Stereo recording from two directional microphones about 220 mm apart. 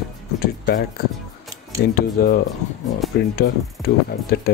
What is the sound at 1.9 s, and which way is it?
Speech, 45° left (ahead or behind).